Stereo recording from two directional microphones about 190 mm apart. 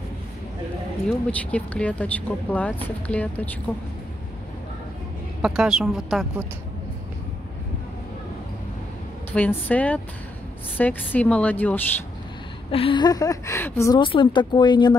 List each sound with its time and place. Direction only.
1.0 s speech: 5° left (ahead or behind)
5.4 s a woman's voice: 5° right (ahead or behind)
9.3 s speech: 10° left (ahead or behind)
12.7 s speech: 25° left (ahead or behind)